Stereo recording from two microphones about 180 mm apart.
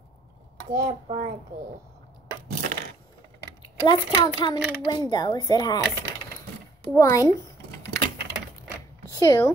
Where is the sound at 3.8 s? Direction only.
20° left (ahead or behind).